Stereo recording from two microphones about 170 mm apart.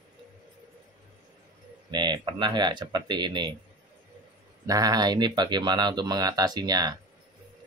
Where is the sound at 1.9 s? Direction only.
25° right (ahead or behind).